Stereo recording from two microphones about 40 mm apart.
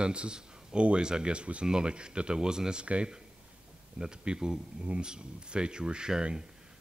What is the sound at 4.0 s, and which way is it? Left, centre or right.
Speech, right.